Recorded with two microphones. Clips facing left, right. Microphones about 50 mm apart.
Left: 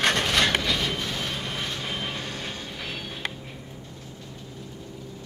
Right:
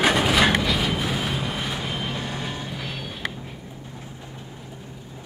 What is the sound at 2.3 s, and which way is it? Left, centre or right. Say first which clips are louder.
Vehicle: right 4 dB; centre.